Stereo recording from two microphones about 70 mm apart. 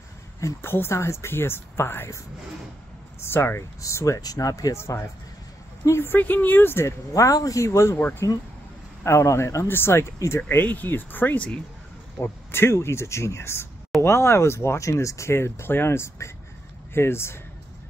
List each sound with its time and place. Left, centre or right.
0.6 s speech: left
3.3 s speech: left
3.8 s speech: left
4.2 s speech: left
4.7 s speech: left
6.1 s speech: left
7.2 s speech: left
7.6 s speech: left
10.6 s speech: left
12.2 s speech: left